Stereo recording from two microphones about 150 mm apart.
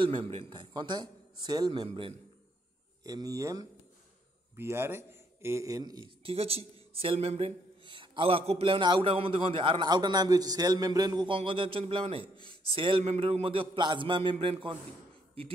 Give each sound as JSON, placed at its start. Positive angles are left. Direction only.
{"t": 0.0, "sound": "a man's voice", "side_deg": -35}
{"t": 3.0, "sound": "a man's voice", "side_deg": -25}